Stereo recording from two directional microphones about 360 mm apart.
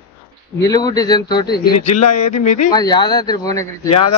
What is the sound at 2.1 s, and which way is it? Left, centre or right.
Speech, left.